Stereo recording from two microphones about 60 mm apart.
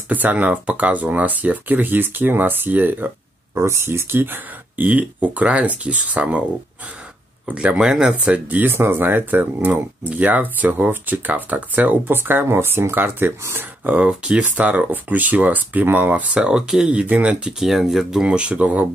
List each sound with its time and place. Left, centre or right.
0.1 s speech: right
3.5 s speech: right
7.4 s speech: centre
8.5 s speech: right
13.8 s speech: right
16.3 s speech: centre
17.0 s speech: right; by 18.2 s centre
18.2 s speech: centre